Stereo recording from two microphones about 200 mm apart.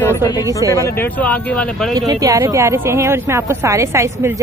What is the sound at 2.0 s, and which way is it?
A woman's voice, 20° right (ahead or behind).